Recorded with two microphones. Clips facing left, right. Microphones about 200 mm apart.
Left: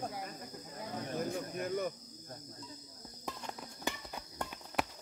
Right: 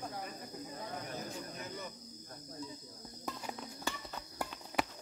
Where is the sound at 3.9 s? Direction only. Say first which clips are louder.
Left 2 dB; 15° left (ahead or behind).